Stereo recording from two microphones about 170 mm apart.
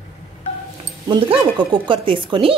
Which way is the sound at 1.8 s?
30° right (ahead or behind).